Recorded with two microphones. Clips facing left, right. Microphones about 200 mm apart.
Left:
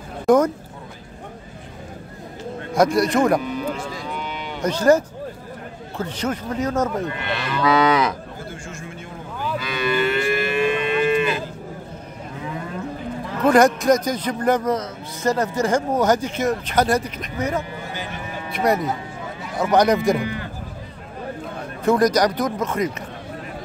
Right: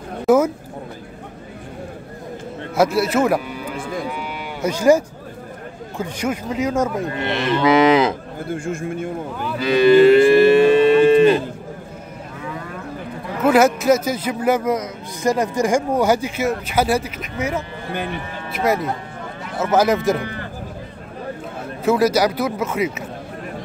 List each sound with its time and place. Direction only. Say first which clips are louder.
0.3 s speech: right 1 dB; 5° right (ahead or behind)
2.7 s speech: even; 5° right (ahead or behind)
3.7 s cattle: right 4 dB; 55° right (ahead or behind)
4.0 s cattle: right 2 dB; 10° right (ahead or behind)
5.9 s a man's voice: right 2 dB; 10° right (ahead or behind)
7.1 s cattle: right 6 dB; 25° right (ahead or behind)
8.4 s a man's voice: right 9 dB; 55° right (ahead or behind)
9.6 s moo: right 12 dB; 30° right (ahead or behind)
13.4 s a man's voice: right 1 dB; 5° right (ahead or behind)
21.8 s a man's voice: right 1 dB; 5° right (ahead or behind)